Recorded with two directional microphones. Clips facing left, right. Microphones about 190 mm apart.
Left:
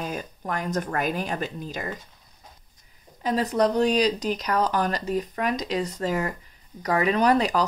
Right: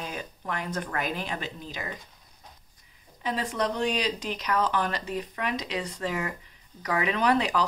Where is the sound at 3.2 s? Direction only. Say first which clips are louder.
Left 6 dB; 40° left (ahead or behind).